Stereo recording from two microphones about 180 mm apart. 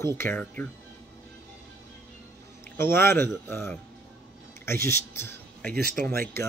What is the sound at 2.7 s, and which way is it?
A man's voice, 15° left (ahead or behind).